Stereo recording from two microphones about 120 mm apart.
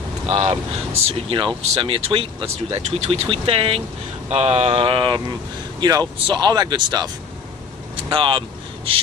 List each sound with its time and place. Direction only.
0.3 s speech: 65° right (ahead or behind)
4.3 s speech: 60° right (ahead or behind); by 5.2 s 45° right (ahead or behind)
5.8 s a man's voice: 30° right (ahead or behind)
8.1 s vehicle: 45° right (ahead or behind)